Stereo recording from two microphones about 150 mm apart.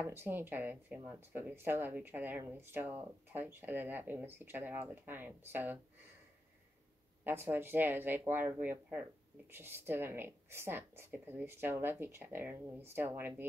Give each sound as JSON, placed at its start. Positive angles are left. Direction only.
{"t": 0.0, "sound": "speech", "side_deg": -15}
{"t": 7.2, "sound": "speech", "side_deg": -15}